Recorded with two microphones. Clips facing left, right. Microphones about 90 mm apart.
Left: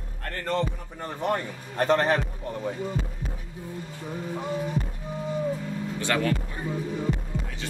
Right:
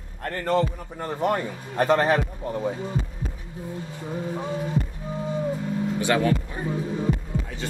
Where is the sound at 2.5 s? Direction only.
20° right (ahead or behind).